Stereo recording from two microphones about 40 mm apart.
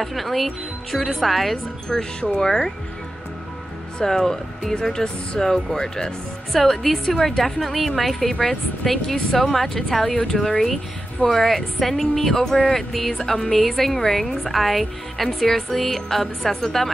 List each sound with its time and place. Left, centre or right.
0.0 s speech: centre
2.3 s speech: centre
4.0 s speech: centre
6.5 s speech: centre
10.1 s speech: centre